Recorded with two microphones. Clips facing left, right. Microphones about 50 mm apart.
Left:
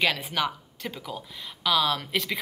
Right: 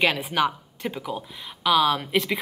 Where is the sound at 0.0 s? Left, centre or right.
Centre.